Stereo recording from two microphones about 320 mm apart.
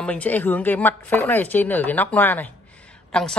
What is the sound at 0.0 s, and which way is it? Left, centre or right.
Speech, centre.